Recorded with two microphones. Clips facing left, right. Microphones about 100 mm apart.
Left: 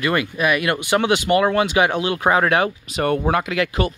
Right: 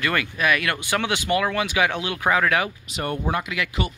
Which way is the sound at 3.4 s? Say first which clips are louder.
Left 6 dB; 45° left (ahead or behind).